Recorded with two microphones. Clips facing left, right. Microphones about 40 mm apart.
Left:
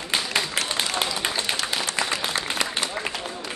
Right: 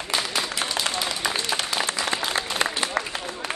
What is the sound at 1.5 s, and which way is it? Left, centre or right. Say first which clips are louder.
Applause: right 1 dB; right.